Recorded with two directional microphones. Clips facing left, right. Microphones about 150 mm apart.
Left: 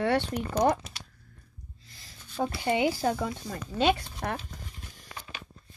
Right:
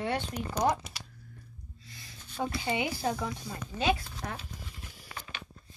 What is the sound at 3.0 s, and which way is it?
Speech, 50° left (ahead or behind).